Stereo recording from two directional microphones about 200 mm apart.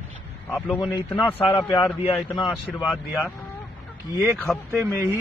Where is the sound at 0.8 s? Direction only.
10° left (ahead or behind).